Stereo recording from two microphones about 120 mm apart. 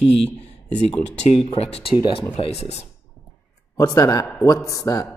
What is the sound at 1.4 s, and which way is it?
Speech, 55° left (ahead or behind).